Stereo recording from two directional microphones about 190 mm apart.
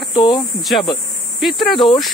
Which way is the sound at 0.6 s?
Centre (ahead or behind).